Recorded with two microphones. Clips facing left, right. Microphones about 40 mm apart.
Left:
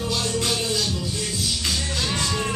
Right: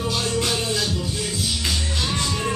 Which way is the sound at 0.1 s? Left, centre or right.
Right.